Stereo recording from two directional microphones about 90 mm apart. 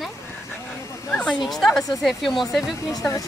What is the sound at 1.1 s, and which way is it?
Speech, 10° left (ahead or behind).